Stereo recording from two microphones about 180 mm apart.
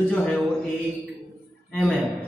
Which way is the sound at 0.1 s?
5° left (ahead or behind).